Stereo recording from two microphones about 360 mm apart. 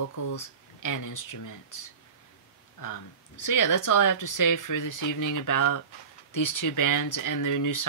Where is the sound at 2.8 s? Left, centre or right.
Left.